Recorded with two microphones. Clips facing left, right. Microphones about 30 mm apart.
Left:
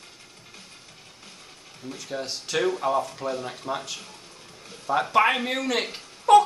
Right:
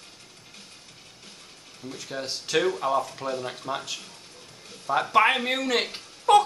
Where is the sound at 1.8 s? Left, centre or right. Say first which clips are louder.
Left 1 dB; centre.